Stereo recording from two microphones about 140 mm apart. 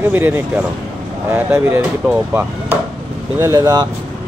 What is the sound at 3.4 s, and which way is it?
Speech, 25° right (ahead or behind).